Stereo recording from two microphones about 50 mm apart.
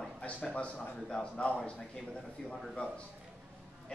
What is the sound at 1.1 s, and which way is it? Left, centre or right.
Speech, centre.